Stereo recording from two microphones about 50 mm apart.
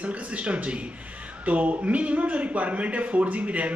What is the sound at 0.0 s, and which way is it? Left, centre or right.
A man's voice, right.